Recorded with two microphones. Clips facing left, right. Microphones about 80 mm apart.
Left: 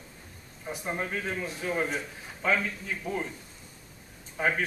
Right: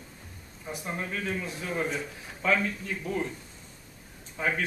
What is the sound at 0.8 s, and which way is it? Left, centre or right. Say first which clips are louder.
Speech: left 2 dB; left.